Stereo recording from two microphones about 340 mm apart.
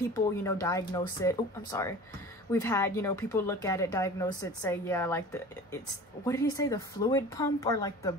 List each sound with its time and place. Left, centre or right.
0.1 s a woman's voice: centre